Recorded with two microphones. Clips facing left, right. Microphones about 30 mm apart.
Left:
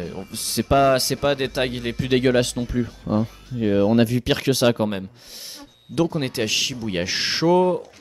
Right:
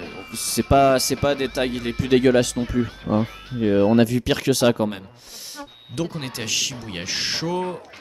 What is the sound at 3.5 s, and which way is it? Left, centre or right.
Speech, centre.